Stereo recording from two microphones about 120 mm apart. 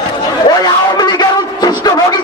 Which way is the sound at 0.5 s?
35° left (ahead or behind).